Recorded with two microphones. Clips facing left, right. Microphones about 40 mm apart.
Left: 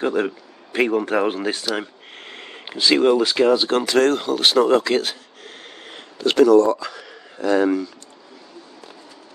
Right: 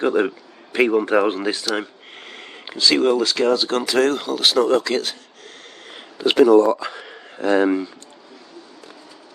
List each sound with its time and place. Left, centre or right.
0.0 s a man's voice: centre
2.2 s sniff: centre
2.8 s speech: centre
6.1 s speech: centre